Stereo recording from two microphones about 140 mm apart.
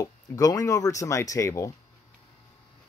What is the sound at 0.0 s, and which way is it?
Speech, 25° left (ahead or behind).